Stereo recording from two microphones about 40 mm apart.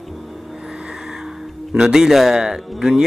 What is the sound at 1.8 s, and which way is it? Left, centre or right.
Speech, centre.